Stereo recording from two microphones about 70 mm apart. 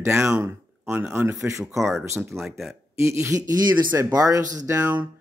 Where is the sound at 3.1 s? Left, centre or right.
Right.